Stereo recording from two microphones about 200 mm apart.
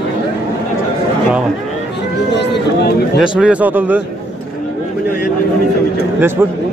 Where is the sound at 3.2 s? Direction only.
5° right (ahead or behind).